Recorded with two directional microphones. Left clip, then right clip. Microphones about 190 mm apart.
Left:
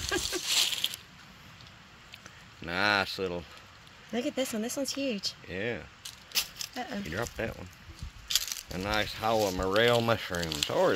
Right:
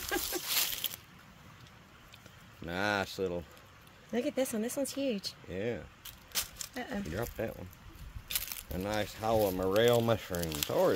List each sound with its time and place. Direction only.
0.1 s a sound: 10° right (ahead or behind)
2.6 s speech: 5° right (ahead or behind)
4.1 s speech: 20° right (ahead or behind)
5.5 s speech: 5° right (ahead or behind)
6.7 s speech: 25° right (ahead or behind)
7.3 s speech: centre (ahead or behind)
8.7 s speech: 5° right (ahead or behind)